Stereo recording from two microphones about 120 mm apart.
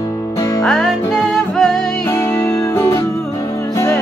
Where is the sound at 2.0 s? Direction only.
20° left (ahead or behind).